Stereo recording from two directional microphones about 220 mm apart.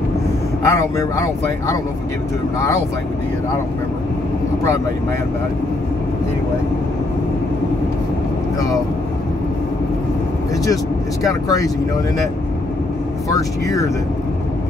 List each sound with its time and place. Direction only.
0.7 s speech: 15° left (ahead or behind)
11.2 s speech: 15° left (ahead or behind)
13.3 s speech: 15° left (ahead or behind)